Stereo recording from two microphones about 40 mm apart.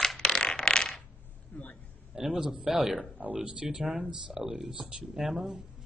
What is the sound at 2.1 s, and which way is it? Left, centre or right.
Speech, centre.